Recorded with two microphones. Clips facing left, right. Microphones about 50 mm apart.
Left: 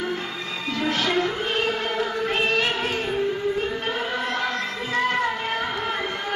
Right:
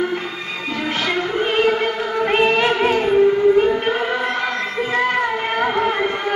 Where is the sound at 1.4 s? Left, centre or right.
Right.